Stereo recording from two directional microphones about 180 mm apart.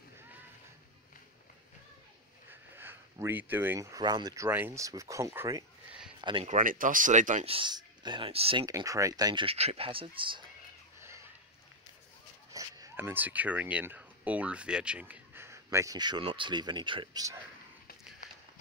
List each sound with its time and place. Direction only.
2.5 s speech: 10° right (ahead or behind)
6.2 s speech: 30° right (ahead or behind)
6.5 s speech: 50° right (ahead or behind)
7.5 s speech: 25° right (ahead or behind)
8.6 s speech: 20° right (ahead or behind)
11.0 s a sound: 15° right (ahead or behind)
12.5 s speech: 20° right (ahead or behind)